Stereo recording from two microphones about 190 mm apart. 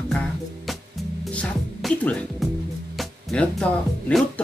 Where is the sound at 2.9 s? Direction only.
Centre (ahead or behind).